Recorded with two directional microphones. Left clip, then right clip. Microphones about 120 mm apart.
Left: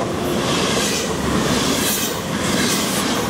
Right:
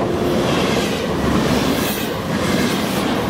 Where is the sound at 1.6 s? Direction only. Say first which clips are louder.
Even; 30° left (ahead or behind).